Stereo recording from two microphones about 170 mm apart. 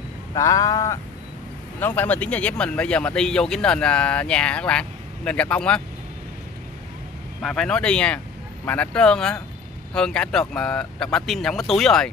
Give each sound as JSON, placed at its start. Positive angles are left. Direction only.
{"t": 0.3, "sound": "a sound", "side_deg": 20}
{"t": 1.8, "sound": "a man's voice", "side_deg": 10}
{"t": 7.4, "sound": "speech", "side_deg": 5}